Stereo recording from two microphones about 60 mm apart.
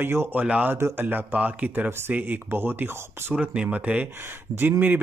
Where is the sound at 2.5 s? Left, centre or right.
Right.